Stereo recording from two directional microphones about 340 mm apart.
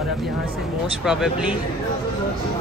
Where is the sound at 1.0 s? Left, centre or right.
Centre.